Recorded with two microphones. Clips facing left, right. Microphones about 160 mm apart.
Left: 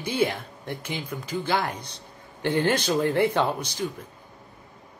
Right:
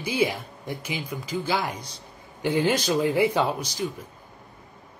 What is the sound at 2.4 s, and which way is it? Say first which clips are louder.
Speech: even; 10° right (ahead or behind).